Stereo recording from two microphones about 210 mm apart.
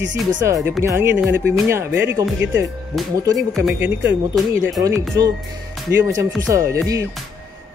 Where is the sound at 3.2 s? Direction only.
15° right (ahead or behind); by 4.8 s centre (ahead or behind).